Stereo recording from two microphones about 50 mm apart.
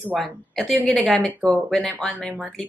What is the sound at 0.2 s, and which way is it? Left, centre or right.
A woman's voice, centre.